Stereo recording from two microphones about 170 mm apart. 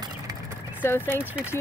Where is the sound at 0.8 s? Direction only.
15° left (ahead or behind).